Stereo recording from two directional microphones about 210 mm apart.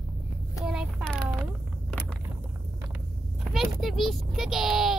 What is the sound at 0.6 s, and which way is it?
Child singing, 5° right (ahead or behind).